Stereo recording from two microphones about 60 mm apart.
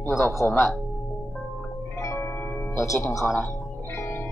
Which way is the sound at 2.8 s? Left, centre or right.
Left.